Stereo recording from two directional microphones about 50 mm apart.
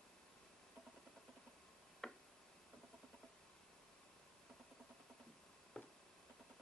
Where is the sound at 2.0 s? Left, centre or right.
Centre.